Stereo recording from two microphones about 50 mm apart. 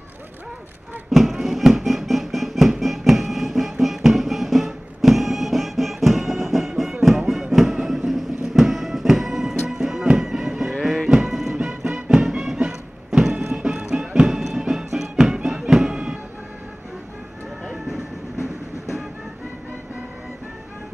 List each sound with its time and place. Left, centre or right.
1.1 s music: centre
7.9 s vehicle: centre
8.5 s music: centre
11.1 s music: centre
17.6 s train: centre